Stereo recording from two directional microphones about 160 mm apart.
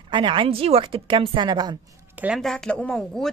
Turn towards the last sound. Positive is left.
turn(degrees=5)  # may be behind; listen again after turning